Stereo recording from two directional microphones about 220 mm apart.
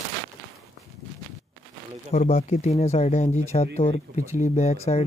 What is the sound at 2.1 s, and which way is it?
Speech, 30° left (ahead or behind).